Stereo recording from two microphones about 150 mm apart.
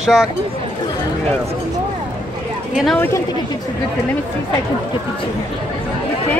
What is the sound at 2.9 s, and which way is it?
Speech, 15° left (ahead or behind).